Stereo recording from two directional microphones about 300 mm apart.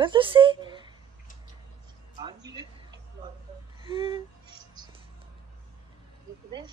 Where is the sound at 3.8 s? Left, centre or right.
Centre.